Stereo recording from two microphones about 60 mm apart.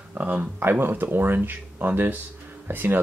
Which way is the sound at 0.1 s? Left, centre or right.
Right.